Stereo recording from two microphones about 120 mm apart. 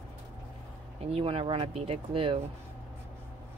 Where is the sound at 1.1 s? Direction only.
50° right (ahead or behind).